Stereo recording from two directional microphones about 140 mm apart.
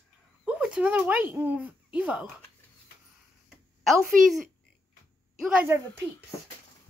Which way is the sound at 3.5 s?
Centre (ahead or behind).